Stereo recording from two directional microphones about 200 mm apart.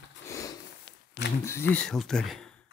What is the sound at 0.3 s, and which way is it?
Sniff, 15° left (ahead or behind).